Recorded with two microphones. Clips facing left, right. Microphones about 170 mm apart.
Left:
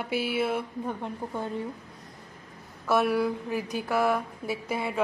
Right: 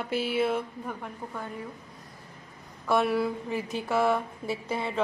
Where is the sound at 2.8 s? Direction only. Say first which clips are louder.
Left 1 dB; centre (ahead or behind).